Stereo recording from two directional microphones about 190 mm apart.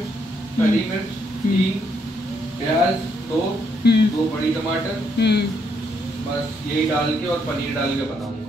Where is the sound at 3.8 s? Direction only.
60° left (ahead or behind).